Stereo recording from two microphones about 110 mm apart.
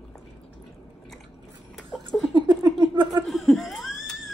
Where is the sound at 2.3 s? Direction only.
45° right (ahead or behind).